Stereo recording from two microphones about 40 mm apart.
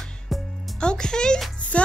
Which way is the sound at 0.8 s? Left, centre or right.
Left.